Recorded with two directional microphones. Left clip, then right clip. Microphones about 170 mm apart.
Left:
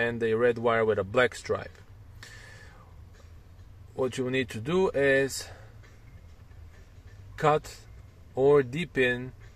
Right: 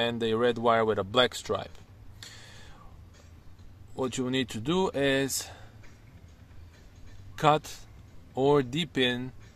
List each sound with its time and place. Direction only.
0.0 s speech: 20° right (ahead or behind)
3.9 s speech: 25° right (ahead or behind)
5.1 s speech: 40° right (ahead or behind)
7.3 s speech: 35° right (ahead or behind)